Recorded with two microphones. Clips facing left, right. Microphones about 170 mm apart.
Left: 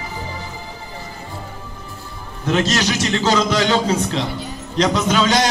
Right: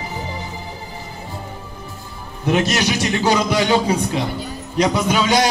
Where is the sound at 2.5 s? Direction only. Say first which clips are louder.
Even; 15° right (ahead or behind).